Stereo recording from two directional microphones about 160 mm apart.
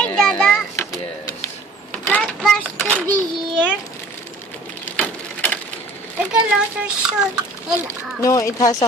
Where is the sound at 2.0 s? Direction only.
Centre (ahead or behind).